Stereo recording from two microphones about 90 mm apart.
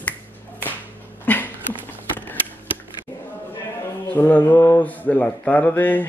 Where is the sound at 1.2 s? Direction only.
20° left (ahead or behind).